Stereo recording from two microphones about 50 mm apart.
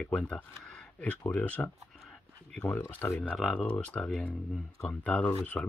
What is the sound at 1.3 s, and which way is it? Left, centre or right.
Speech, left.